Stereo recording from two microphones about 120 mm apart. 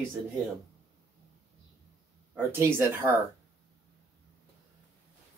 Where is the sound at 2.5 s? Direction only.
20° right (ahead or behind).